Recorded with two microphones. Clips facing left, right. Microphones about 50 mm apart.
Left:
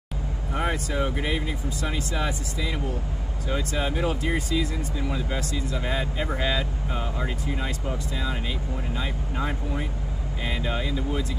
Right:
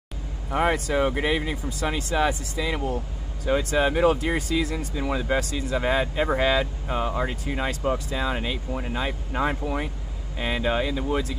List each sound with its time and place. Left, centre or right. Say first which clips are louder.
0.7 s speech: right 4 dB; right
5.7 s speech: right 8 dB; right
10.4 s speech: right 5 dB; right